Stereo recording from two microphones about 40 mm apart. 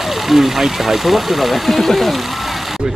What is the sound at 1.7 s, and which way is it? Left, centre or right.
Speech, centre.